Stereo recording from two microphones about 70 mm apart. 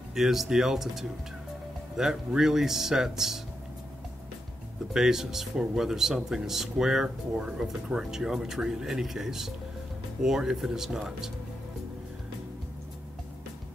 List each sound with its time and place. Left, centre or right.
0.1 s speech: centre
4.9 s speech: centre